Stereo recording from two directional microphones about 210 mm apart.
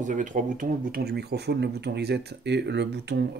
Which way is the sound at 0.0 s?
35° right (ahead or behind).